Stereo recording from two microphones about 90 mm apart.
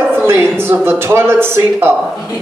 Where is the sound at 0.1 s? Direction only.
25° right (ahead or behind).